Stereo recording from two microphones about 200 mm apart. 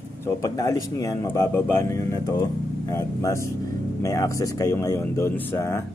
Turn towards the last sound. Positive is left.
turn(degrees=10)  # may be behind; listen again after turning